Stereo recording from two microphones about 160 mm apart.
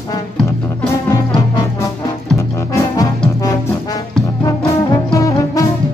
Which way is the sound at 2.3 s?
20° left (ahead or behind).